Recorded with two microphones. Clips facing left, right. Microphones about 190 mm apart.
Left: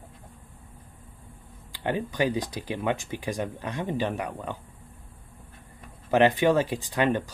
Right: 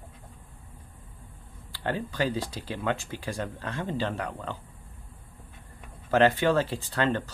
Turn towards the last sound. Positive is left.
turn(degrees=15)  # may be behind; listen again after turning